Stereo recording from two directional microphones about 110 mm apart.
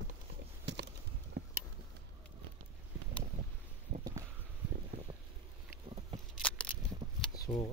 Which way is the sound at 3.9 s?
70° right (ahead or behind).